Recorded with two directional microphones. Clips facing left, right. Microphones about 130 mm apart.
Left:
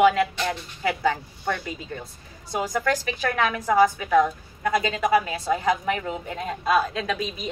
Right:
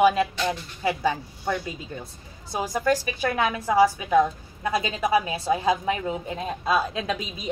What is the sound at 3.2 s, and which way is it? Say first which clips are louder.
A woman's voice: even; 20° right (ahead or behind).